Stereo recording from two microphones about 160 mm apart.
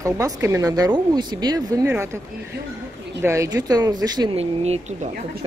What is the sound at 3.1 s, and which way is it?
A man's voice, 15° right (ahead or behind).